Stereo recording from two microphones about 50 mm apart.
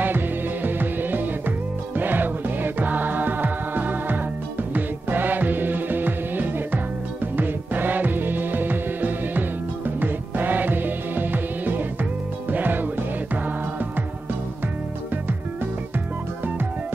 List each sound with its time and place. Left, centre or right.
0.0 s music: right